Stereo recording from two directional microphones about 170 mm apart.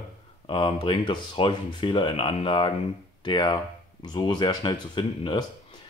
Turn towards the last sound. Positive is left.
turn(degrees=25)  # may be behind; listen again after turning